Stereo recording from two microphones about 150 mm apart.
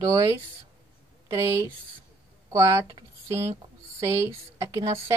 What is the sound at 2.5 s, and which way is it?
Speech, 20° right (ahead or behind).